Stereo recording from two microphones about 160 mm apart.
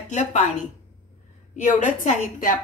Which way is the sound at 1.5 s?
50° left (ahead or behind).